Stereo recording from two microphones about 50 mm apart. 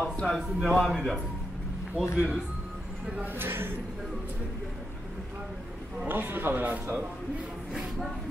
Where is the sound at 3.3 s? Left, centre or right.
Right.